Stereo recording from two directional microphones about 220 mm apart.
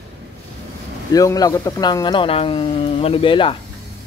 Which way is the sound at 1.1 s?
15° left (ahead or behind).